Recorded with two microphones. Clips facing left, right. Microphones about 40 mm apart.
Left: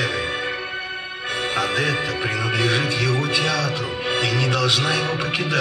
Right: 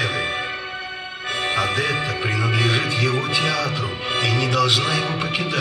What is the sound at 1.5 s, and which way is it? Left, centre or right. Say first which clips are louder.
Music: even; centre.